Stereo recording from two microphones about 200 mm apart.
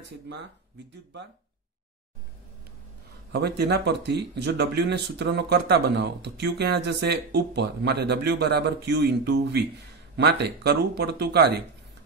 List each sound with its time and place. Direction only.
3.3 s speech: 60° right (ahead or behind)